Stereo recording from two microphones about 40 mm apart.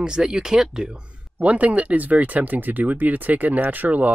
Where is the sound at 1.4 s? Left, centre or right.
Right.